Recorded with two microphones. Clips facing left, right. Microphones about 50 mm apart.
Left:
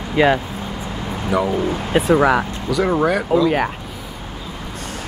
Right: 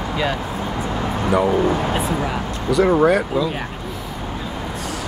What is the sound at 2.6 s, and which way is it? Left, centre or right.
Speech, centre.